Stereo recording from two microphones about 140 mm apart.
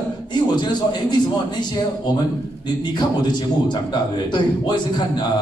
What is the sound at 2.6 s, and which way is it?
A man's voice, 30° left (ahead or behind).